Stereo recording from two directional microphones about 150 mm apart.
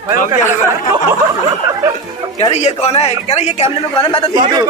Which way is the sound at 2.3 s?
45° left (ahead or behind).